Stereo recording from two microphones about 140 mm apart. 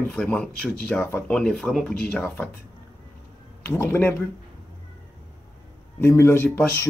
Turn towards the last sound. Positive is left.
turn(degrees=15)  # may be behind; listen again after turning